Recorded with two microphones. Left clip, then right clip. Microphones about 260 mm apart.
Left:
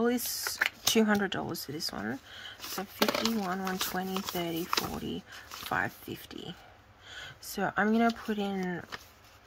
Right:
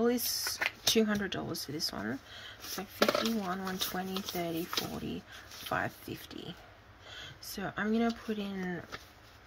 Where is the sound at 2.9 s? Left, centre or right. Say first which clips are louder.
Even; left.